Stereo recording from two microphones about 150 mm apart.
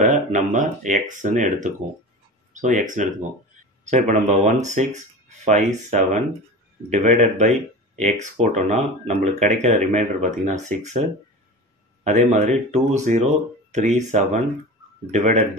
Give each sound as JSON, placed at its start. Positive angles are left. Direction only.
{"t": 0.0, "sound": "speech", "side_deg": -55}
{"t": 12.0, "sound": "speech", "side_deg": -50}